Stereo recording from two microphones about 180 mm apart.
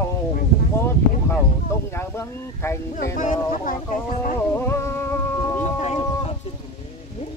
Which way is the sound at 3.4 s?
45° left (ahead or behind).